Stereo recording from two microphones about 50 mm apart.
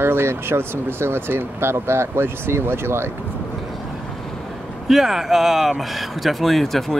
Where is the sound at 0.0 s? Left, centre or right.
Right.